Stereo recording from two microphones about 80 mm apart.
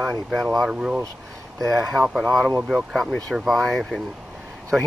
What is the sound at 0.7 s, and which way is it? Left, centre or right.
Speech, centre.